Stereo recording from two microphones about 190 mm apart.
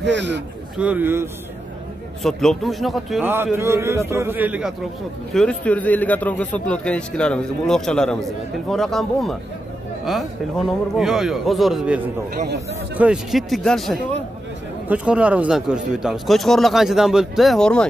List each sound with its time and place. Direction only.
0.0 s a man's voice: 70° right (ahead or behind)
0.7 s a man's voice: 10° right (ahead or behind)
2.2 s a man's voice: centre (ahead or behind)
3.5 s a man's voice: 15° right (ahead or behind); by 17.8 s 5° left (ahead or behind)